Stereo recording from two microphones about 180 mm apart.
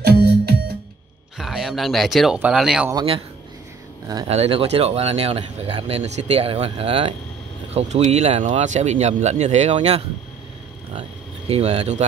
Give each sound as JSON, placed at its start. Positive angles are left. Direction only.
{"t": 0.0, "sound": "music", "side_deg": -65}
{"t": 1.4, "sound": "speech", "side_deg": 0}
{"t": 2.9, "sound": "a man's voice", "side_deg": -25}
{"t": 4.3, "sound": "speech", "side_deg": -35}
{"t": 8.6, "sound": "speech", "side_deg": -40}